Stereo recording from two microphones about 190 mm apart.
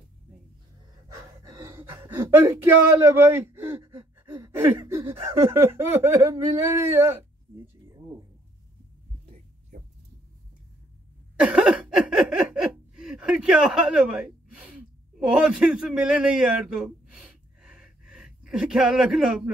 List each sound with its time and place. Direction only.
1.4 s gasp: 15° right (ahead or behind)
3.7 s gasp: 25° right (ahead or behind)
4.3 s speech: 15° right (ahead or behind)
11.3 s a sound: 5° right (ahead or behind)